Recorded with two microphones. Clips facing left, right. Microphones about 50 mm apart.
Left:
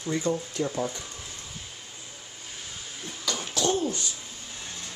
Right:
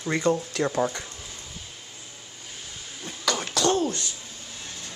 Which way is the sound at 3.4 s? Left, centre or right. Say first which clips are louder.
Right 2 dB; right.